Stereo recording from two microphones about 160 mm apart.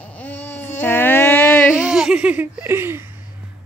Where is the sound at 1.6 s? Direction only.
5° right (ahead or behind).